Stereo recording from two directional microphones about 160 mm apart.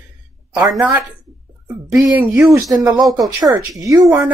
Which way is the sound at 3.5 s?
25° right (ahead or behind).